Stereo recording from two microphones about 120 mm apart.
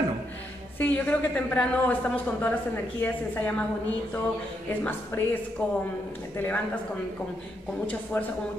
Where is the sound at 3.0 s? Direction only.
10° left (ahead or behind).